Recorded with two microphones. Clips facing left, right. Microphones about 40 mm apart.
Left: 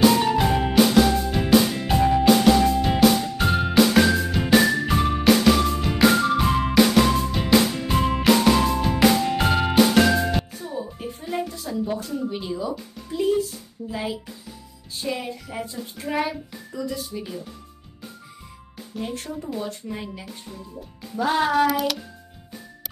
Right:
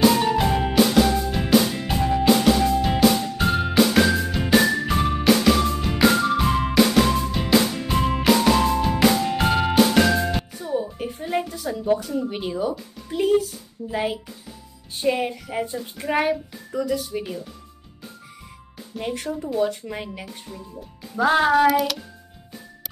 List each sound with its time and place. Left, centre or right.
0.2 s music: centre
10.6 s music: right
11.3 s music: right
12.3 s speech: right
13.8 s speech: right
17.1 s speech: right
19.9 s speech: right
21.6 s speech: centre